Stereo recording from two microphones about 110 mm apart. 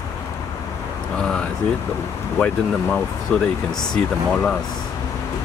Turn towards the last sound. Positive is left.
turn(degrees=5)  # may be behind; listen again after turning